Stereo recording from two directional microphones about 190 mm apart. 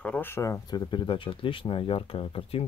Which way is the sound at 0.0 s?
10° left (ahead or behind).